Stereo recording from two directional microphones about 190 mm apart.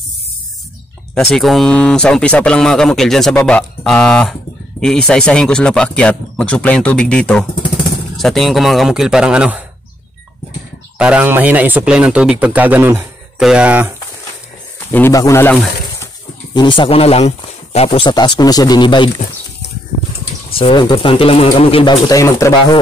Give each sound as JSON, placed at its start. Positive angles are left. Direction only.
{"t": 1.1, "sound": "speech", "side_deg": 5}
{"t": 11.0, "sound": "speech", "side_deg": -5}
{"t": 14.9, "sound": "speech", "side_deg": 10}
{"t": 16.5, "sound": "speech", "side_deg": 25}
{"t": 20.5, "sound": "speech", "side_deg": 25}